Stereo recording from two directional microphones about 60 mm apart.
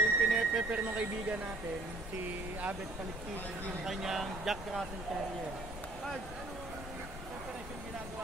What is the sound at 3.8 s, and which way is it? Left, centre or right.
Speech, centre.